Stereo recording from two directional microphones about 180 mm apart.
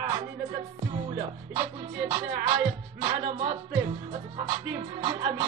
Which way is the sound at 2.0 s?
20° right (ahead or behind).